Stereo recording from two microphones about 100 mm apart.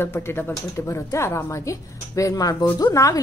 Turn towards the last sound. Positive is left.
turn(degrees=35)  # may be behind; listen again after turning